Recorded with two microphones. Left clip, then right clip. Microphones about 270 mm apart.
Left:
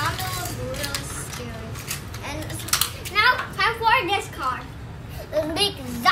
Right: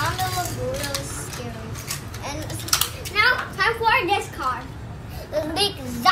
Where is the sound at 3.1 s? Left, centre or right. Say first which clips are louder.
Even; centre.